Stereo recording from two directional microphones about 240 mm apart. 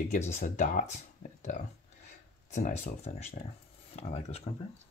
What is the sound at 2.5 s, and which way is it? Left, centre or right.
Speech, left.